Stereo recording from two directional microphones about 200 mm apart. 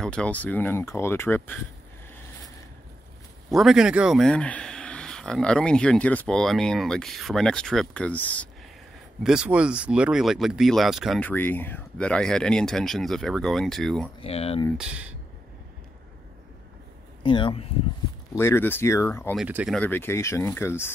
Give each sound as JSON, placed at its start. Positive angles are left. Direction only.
{"t": 0.0, "sound": "speech", "side_deg": 5}
{"t": 3.4, "sound": "speech", "side_deg": 0}
{"t": 9.2, "sound": "speech", "side_deg": -5}
{"t": 14.2, "sound": "speech", "side_deg": 30}
{"t": 14.8, "sound": "speech", "side_deg": -5}
{"t": 17.2, "sound": "speech", "side_deg": 25}
{"t": 18.3, "sound": "speech", "side_deg": 10}
{"t": 19.3, "sound": "speech", "side_deg": -5}
{"t": 19.8, "sound": "speech", "side_deg": 10}